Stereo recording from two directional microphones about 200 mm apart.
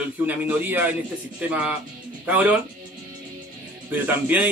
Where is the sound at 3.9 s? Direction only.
10° right (ahead or behind).